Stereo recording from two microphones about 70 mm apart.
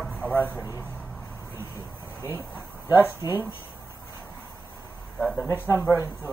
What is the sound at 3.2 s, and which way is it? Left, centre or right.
Speech, left.